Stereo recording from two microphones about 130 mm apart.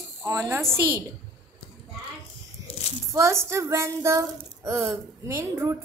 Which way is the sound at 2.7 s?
50° left (ahead or behind).